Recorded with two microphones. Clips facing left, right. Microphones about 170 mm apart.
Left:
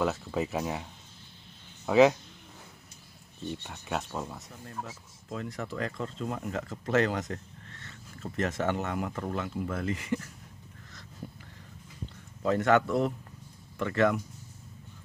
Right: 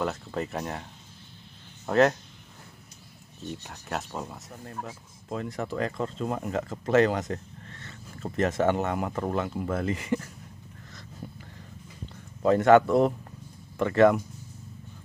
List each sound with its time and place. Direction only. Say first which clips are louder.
0.0 s speech: left 1 dB; centre (ahead or behind)
1.9 s speech: left 1 dB; centre (ahead or behind)
3.4 s speech: even; centre (ahead or behind)
5.3 s speech: right 4 dB; 35° right (ahead or behind)
6.5 s speech: right 5 dB; 30° right (ahead or behind)
12.4 s speech: right 6 dB; 40° right (ahead or behind)
12.8 s speech: right 6 dB; 50° right (ahead or behind)
13.7 s speech: right 6 dB; 40° right (ahead or behind)